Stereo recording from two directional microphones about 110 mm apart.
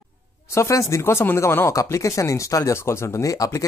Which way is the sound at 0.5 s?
25° left (ahead or behind).